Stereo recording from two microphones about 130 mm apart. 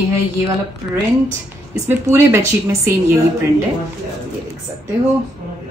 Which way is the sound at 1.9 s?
15° right (ahead or behind).